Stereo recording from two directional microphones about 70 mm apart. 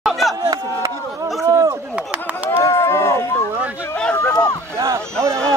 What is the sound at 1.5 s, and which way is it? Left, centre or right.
Chop, right.